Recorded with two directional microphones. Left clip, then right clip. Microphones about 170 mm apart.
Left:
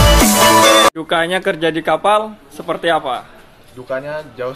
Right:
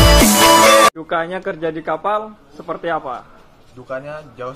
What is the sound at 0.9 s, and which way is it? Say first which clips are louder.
A man's voice: left 5 dB; 30° left (ahead or behind).